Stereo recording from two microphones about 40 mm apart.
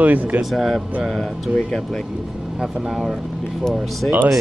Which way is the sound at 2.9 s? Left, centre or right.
Centre.